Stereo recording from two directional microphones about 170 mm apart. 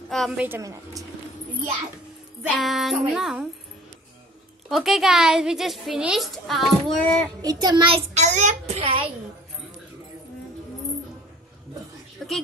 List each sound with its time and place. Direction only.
0.1 s a woman's voice: centre (ahead or behind)
0.5 s a woman's voice: 20° right (ahead or behind)
2.4 s a child's voice: 5° left (ahead or behind)
4.6 s a child's voice: centre (ahead or behind)
7.4 s a child's voice: 25° right (ahead or behind)